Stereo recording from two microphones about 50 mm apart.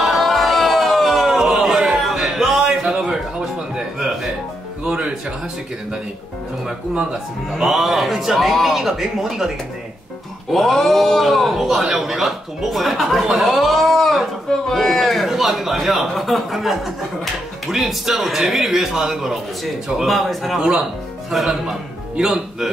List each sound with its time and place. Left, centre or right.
0.0 s a sound: centre
3.1 s music: centre
4.8 s music: right
7.5 s a man's voice: centre
10.5 s a man's voice: centre
20.5 s a man's voice: centre